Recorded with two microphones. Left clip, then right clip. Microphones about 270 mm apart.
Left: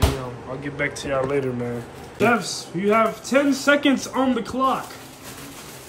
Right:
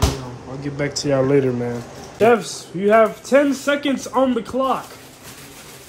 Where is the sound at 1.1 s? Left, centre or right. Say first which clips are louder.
Right 7 dB; right.